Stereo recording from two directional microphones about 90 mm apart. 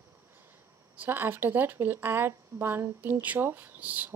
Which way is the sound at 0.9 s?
25° right (ahead or behind).